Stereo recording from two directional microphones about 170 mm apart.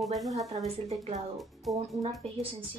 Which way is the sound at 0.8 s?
40° right (ahead or behind).